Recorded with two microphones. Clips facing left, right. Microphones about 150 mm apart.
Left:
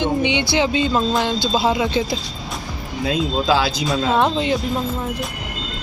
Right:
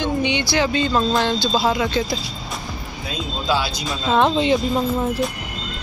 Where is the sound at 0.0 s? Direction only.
20° left (ahead or behind).